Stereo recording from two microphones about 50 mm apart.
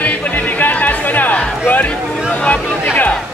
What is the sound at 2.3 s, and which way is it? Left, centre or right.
Speech, left.